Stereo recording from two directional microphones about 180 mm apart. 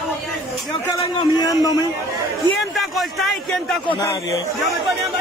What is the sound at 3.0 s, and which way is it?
Speech, centre (ahead or behind).